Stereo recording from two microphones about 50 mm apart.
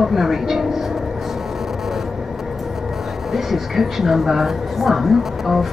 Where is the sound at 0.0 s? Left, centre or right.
Centre.